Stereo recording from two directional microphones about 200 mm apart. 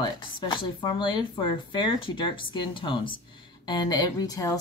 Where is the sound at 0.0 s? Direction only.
20° left (ahead or behind).